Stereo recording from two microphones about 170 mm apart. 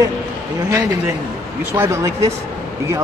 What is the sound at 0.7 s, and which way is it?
Speech, 15° right (ahead or behind).